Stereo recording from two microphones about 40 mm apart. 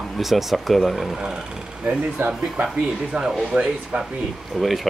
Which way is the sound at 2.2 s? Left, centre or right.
Right.